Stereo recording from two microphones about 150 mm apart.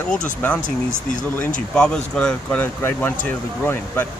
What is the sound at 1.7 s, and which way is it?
Speech, 5° left (ahead or behind).